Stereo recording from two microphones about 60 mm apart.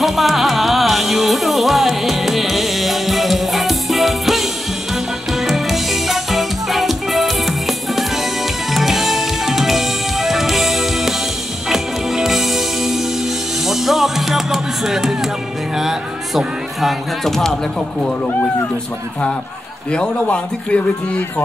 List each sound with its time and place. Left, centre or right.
0.0 s music: centre
5.5 s music: centre
15.8 s speech: centre
19.9 s a man's voice: centre